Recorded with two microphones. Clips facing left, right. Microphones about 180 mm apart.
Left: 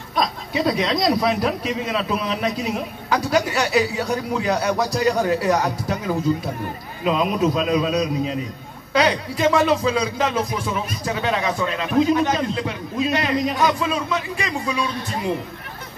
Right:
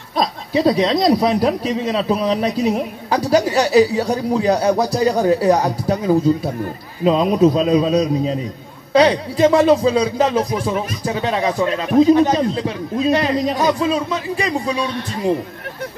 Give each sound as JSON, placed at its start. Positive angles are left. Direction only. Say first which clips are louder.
{"t": 0.1, "sound": "speech", "louder": "right 4 dB", "side_deg": -30}